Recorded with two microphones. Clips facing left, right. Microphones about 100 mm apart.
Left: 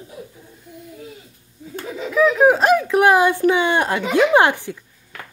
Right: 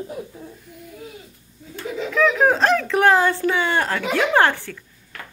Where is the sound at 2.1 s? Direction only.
10° left (ahead or behind).